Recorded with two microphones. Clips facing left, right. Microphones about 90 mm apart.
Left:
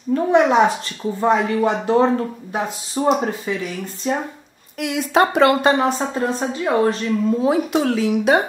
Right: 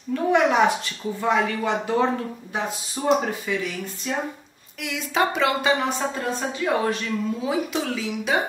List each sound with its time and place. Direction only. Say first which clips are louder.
0.1 s a woman's voice: left 5 dB; 30° left (ahead or behind)
4.7 s a woman's voice: left 7 dB; 55° left (ahead or behind)
5.9 s speech: left 5 dB; 35° left (ahead or behind)
7.4 s a woman's voice: left 7 dB; 55° left (ahead or behind)